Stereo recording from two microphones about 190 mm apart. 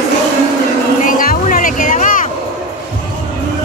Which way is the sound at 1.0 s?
45° left (ahead or behind).